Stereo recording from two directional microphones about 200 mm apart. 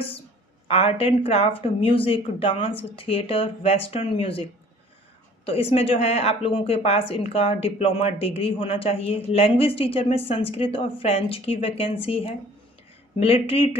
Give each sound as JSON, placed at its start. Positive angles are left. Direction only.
{"t": 0.7, "sound": "speech", "side_deg": 30}